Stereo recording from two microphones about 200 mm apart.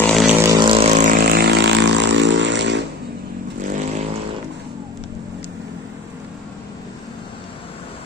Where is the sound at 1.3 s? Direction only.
55° right (ahead or behind).